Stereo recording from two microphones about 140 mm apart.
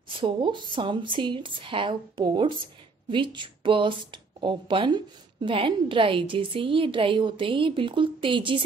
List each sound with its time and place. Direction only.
0.2 s speech: 35° right (ahead or behind)